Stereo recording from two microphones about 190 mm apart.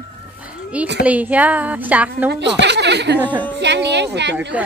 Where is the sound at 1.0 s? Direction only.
10° right (ahead or behind).